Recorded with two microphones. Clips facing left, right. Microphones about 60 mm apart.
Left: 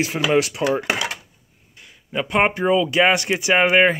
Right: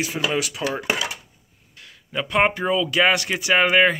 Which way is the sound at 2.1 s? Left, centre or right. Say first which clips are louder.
Left 1 dB; centre.